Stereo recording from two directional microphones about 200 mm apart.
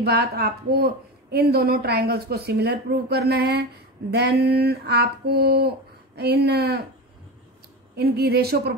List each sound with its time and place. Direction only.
0.0 s speech: 55° right (ahead or behind)
7.9 s speech: 55° right (ahead or behind)